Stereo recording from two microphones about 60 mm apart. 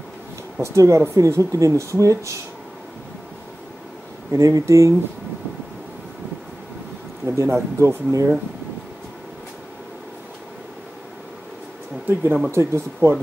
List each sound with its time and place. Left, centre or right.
0.6 s speech: right
4.3 s speech: right
7.2 s speech: right
12.1 s speech: right
12.4 s speech: right